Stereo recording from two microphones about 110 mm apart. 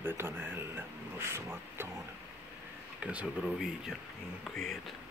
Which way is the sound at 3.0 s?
10° right (ahead or behind).